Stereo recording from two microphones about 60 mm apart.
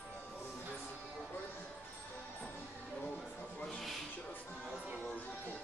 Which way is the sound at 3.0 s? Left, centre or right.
Centre.